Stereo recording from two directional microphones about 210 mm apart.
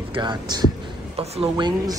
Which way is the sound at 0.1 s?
20° right (ahead or behind).